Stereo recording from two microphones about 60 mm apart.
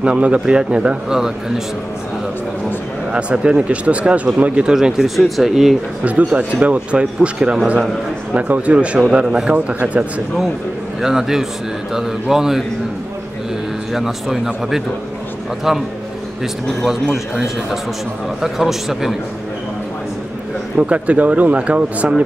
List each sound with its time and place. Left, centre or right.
0.0 s a man's voice: right
3.1 s speech: centre
6.0 s a man's voice: right
11.0 s a man's voice: centre
13.9 s speech: centre
17.1 s speech: centre
20.7 s speech: centre